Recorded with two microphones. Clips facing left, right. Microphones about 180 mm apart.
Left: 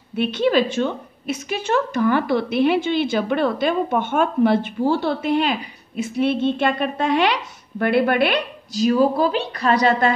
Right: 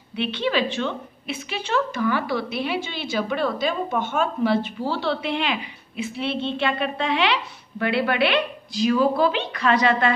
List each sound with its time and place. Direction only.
0.1 s a woman's voice: 45° left (ahead or behind)